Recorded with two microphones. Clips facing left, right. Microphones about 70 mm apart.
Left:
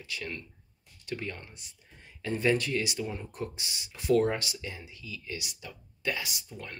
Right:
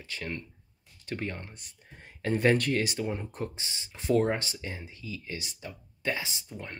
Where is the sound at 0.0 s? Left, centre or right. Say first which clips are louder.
Right 1 dB; right.